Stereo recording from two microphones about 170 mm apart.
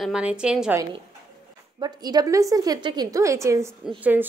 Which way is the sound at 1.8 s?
25° right (ahead or behind).